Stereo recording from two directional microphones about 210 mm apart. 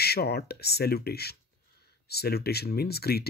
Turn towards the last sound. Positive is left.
turn(degrees=50)  # may be behind; listen again after turning